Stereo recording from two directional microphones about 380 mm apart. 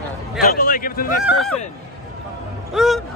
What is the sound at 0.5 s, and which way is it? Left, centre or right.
Speech, left.